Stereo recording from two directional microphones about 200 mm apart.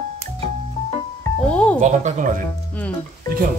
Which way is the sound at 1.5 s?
5° left (ahead or behind).